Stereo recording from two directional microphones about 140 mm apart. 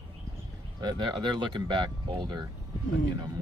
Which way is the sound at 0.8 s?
35° right (ahead or behind).